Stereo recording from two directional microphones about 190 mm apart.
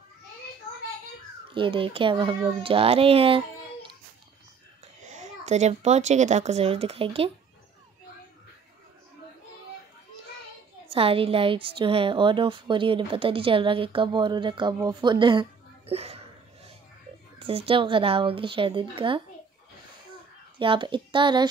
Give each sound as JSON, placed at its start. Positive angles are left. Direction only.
{"t": 1.5, "sound": "a woman's voice", "side_deg": -25}
{"t": 5.0, "sound": "speech", "side_deg": -40}
{"t": 10.9, "sound": "a woman's voice", "side_deg": -30}
{"t": 17.4, "sound": "a woman's voice", "side_deg": -30}
{"t": 20.5, "sound": "a woman's voice", "side_deg": -25}